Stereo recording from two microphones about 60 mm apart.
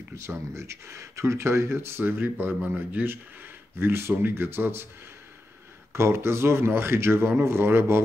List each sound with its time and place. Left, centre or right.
0.1 s speech: right
3.7 s speech: right
5.9 s speech: right